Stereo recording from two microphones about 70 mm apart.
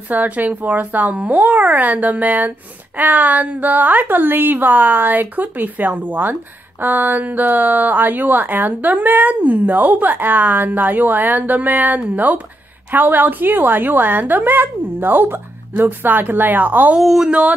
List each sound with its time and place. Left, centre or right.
0.1 s speech: right
17.0 s speech: centre
17.3 s a sound: centre